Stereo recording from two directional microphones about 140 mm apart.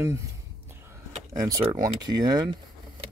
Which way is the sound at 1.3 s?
25° right (ahead or behind).